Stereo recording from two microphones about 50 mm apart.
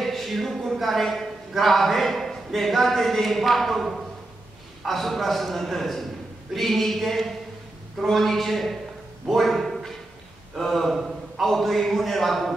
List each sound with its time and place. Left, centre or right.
0.0 s a man's voice: centre